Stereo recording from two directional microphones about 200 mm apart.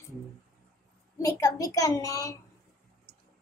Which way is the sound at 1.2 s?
15° left (ahead or behind).